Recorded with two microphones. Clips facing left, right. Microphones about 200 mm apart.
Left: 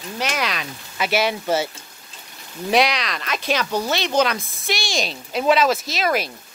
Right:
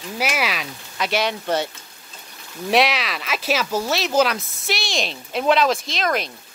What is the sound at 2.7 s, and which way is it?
Speech, centre (ahead or behind).